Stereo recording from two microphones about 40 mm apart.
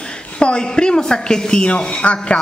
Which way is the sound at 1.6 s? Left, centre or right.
Left.